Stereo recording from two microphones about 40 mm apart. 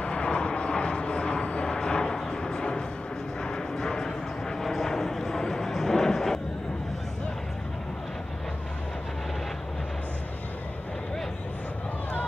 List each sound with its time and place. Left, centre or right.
0.0 s vehicle: left; by 6.4 s centre